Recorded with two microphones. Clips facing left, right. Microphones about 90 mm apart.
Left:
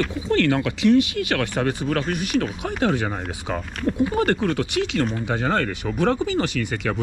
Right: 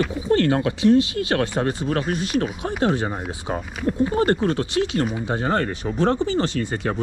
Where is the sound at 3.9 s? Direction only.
10° left (ahead or behind).